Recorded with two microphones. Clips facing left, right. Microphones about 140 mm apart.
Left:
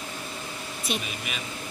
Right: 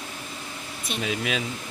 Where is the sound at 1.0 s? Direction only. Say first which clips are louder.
Right 9 dB; 90° right.